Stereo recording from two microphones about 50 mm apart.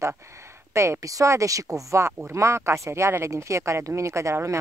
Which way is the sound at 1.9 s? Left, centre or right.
Right.